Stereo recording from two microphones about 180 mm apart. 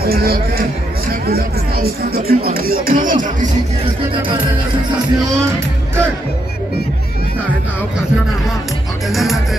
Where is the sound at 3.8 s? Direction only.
30° right (ahead or behind).